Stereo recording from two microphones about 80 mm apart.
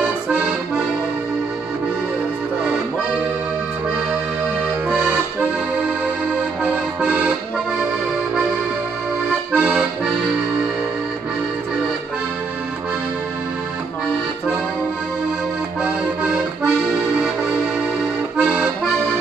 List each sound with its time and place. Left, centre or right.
0.3 s accordion: centre
5.8 s accordion: centre
9.5 s accordion: centre
15.8 s accordion: centre
18.4 s accordion: centre